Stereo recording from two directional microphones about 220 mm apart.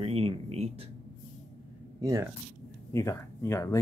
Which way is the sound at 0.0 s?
25° right (ahead or behind).